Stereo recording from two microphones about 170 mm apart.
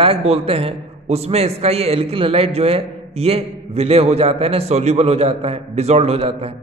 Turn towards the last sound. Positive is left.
turn(degrees=-35)  # may be behind; listen again after turning